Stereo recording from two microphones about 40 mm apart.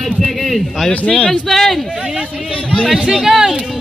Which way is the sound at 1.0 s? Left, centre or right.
Left.